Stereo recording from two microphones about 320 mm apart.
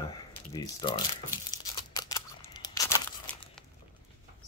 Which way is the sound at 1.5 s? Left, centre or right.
Centre.